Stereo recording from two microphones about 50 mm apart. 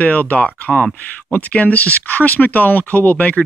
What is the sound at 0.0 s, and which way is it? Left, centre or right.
Speech, left.